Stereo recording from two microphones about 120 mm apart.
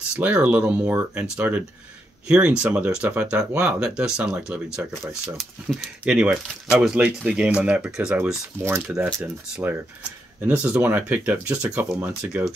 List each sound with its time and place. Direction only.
0.1 s speech: 10° right (ahead or behind)
8.6 s speech: 20° right (ahead or behind)